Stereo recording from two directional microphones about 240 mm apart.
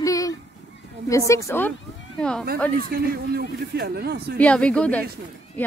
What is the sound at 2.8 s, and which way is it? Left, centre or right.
Speech, right.